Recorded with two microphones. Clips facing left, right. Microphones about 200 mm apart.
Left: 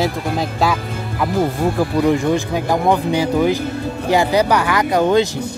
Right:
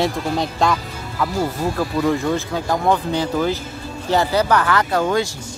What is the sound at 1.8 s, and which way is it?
Speech, 20° left (ahead or behind).